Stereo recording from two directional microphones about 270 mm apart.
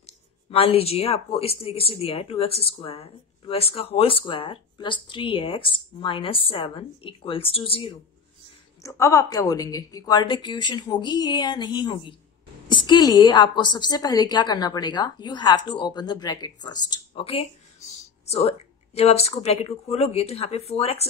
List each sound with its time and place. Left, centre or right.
0.0 s a woman's voice: left
18.2 s a sound: left
18.9 s speech: left